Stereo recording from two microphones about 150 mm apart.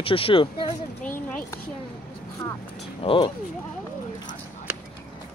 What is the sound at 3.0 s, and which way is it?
Speech, 35° left (ahead or behind).